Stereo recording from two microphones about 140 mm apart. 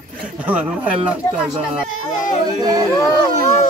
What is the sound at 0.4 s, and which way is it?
Speech, 10° right (ahead or behind).